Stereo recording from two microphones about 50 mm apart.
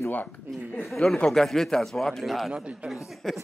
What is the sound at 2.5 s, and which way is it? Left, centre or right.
Speech, right.